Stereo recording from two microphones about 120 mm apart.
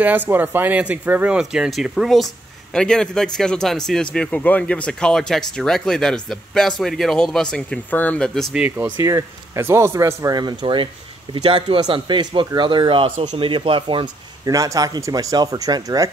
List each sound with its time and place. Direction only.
0.0 s speech: 15° right (ahead or behind); by 8.5 s 10° left (ahead or behind)
8.5 s speech: 15° right (ahead or behind); by 14.0 s 45° right (ahead or behind)
14.4 s speech: 30° right (ahead or behind)